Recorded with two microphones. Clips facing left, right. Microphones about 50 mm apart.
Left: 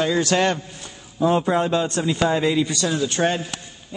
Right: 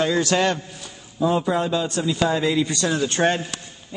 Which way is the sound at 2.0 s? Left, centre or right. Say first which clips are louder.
Even; centre.